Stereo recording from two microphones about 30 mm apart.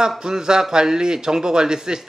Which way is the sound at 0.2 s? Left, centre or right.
Right.